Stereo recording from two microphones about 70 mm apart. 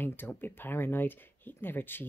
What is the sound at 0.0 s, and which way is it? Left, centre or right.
Speech, left.